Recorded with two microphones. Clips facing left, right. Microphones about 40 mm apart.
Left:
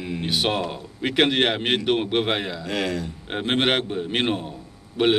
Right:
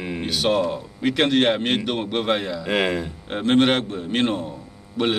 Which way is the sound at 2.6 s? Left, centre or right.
Right.